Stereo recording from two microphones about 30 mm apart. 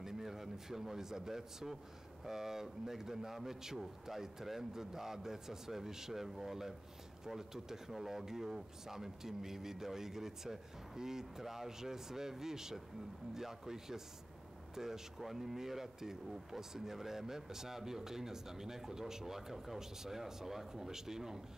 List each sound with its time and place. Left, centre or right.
0.0 s a man's voice: centre